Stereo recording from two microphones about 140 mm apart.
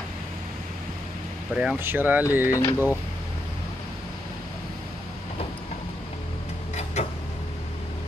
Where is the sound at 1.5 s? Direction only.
10° right (ahead or behind).